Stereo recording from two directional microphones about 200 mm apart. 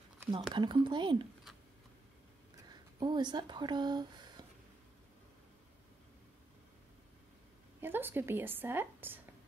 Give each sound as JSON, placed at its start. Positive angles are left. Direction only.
{"t": 0.6, "sound": "speech", "side_deg": -20}
{"t": 2.7, "sound": "speech", "side_deg": -20}
{"t": 7.8, "sound": "a woman's voice", "side_deg": -10}